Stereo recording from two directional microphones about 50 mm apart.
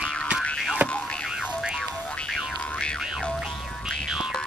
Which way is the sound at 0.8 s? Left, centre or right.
Right.